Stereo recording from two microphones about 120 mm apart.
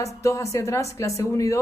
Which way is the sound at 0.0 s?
25° left (ahead or behind).